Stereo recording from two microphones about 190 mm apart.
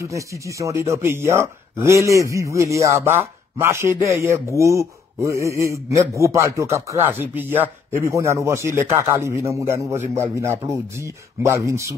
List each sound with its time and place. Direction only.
0.0 s speech: 15° right (ahead or behind)